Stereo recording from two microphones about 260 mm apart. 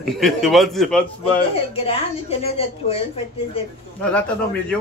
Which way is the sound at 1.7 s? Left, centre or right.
Left.